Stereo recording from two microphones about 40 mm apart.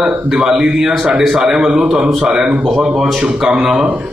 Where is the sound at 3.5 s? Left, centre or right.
Right.